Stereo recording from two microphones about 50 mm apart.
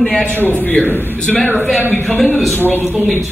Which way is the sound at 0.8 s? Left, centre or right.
Left.